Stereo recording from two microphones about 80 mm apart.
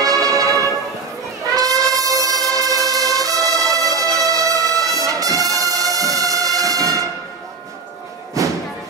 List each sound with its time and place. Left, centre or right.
0.0 s music: right
5.0 s brass instrument: right
8.4 s thump: right